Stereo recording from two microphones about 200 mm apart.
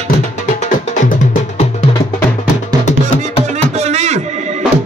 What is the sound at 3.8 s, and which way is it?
Music, 35° right (ahead or behind).